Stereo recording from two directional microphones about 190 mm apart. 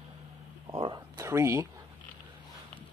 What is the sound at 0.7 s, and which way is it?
Speech, 25° right (ahead or behind).